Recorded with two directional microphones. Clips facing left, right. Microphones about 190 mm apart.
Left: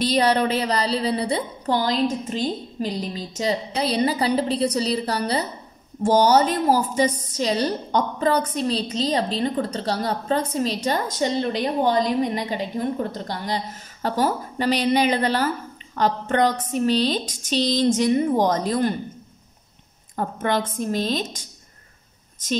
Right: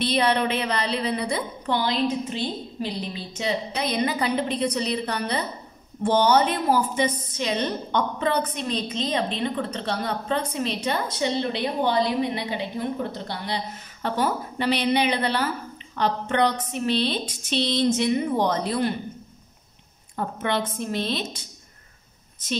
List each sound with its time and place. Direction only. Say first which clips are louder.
0.0 s a woman's voice: left 3 dB; 40° left (ahead or behind)
14.0 s a woman's voice: left 2 dB; 40° left (ahead or behind)
20.2 s a woman's voice: left 2 dB; 45° left (ahead or behind)